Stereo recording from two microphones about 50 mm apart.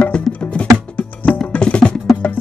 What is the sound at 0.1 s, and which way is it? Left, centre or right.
Music, left.